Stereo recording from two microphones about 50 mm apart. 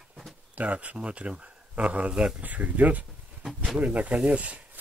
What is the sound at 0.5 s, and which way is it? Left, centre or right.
Speech, right.